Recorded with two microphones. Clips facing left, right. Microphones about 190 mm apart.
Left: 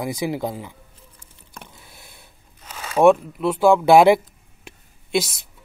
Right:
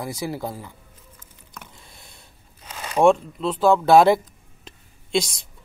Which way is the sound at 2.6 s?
10° right (ahead or behind).